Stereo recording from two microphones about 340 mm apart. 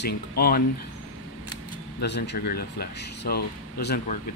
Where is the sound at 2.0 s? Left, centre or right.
Left.